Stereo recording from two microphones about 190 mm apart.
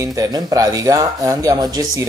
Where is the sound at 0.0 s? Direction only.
20° right (ahead or behind).